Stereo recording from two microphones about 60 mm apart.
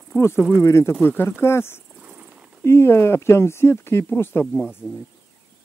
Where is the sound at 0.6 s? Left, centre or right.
Left.